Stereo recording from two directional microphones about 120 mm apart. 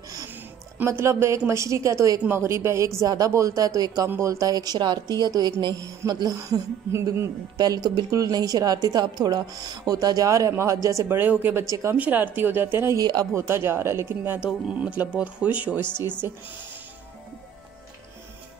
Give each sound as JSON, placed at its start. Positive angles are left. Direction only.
{"t": 0.7, "sound": "a woman's voice", "side_deg": -20}
{"t": 12.9, "sound": "a woman's voice", "side_deg": -35}
{"t": 13.3, "sound": "a woman's voice", "side_deg": -20}